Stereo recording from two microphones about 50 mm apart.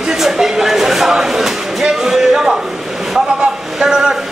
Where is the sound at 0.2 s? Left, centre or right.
Centre.